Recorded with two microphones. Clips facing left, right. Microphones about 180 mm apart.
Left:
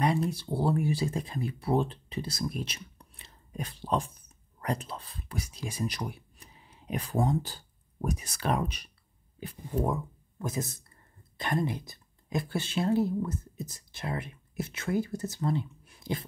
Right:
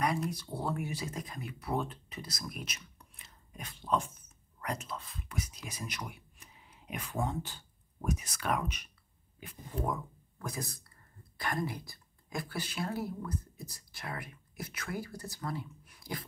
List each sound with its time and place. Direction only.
0.0 s speech: 30° left (ahead or behind)
10.4 s speech: 25° left (ahead or behind)